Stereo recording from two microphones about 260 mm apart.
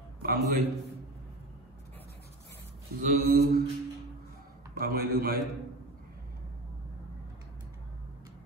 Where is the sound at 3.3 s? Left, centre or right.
Right.